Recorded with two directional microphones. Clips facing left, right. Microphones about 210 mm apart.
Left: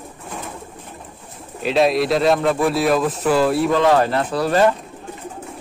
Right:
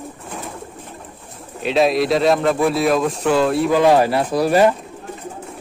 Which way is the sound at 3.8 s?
10° right (ahead or behind).